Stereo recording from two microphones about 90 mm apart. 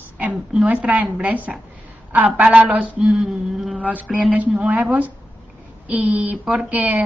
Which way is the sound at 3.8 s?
15° right (ahead or behind).